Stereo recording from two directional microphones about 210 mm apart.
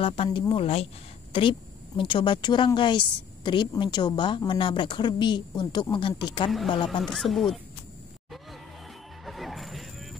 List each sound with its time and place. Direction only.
0.0 s speech: 25° left (ahead or behind)
7.0 s speech: centre (ahead or behind)
9.2 s music: centre (ahead or behind)